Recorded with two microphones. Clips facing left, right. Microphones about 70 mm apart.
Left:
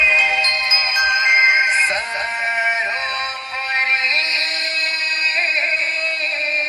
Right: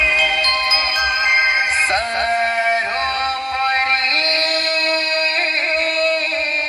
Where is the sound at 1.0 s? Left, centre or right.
Left.